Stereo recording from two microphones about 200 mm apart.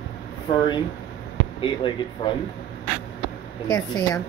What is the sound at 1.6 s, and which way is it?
Speech, 25° left (ahead or behind).